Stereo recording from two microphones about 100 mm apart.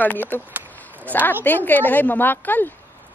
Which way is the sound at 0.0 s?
20° left (ahead or behind).